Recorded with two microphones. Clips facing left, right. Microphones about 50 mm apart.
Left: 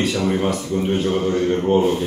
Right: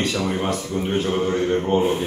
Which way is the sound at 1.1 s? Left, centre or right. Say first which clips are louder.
Left 1 dB; centre.